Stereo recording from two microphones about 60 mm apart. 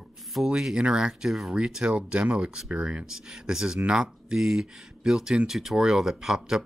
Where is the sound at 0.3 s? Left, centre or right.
Centre.